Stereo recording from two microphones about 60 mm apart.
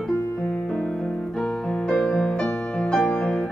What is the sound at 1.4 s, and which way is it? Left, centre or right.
Piano, centre.